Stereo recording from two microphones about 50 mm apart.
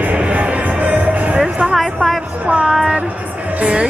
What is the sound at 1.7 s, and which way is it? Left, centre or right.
Music, centre.